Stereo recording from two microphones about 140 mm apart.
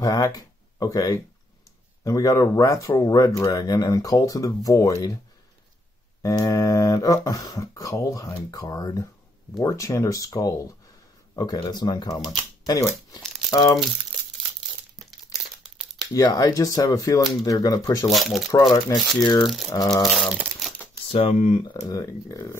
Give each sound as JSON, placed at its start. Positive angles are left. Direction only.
{"t": 0.0, "sound": "speech", "side_deg": 25}
{"t": 6.2, "sound": "speech", "side_deg": 25}
{"t": 15.6, "sound": "crumpling", "side_deg": -5}
{"t": 16.1, "sound": "speech", "side_deg": 30}
{"t": 18.1, "sound": "speech", "side_deg": 0}
{"t": 18.5, "sound": "speech", "side_deg": 25}
{"t": 19.4, "sound": "speech", "side_deg": 0}
{"t": 21.1, "sound": "speech", "side_deg": 50}
{"t": 21.8, "sound": "speech", "side_deg": 25}